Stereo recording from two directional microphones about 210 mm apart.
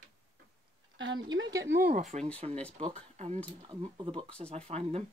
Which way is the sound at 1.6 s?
50° right (ahead or behind).